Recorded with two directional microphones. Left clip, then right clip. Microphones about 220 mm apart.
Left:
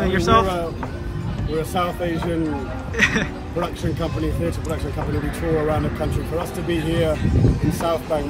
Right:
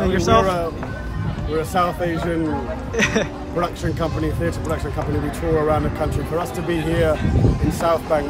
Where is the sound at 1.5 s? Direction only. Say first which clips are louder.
Right 3 dB; centre (ahead or behind).